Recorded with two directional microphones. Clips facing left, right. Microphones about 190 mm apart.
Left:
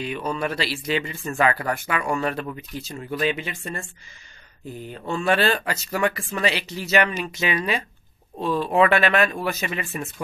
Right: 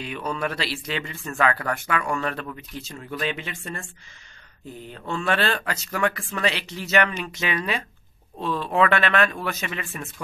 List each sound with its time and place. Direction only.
0.0 s speech: 5° left (ahead or behind)
4.8 s speech: 10° left (ahead or behind)